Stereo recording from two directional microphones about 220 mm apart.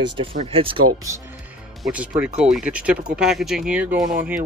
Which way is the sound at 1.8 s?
5° right (ahead or behind).